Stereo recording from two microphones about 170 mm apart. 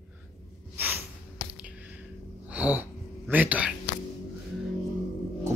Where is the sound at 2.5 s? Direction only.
10° right (ahead or behind).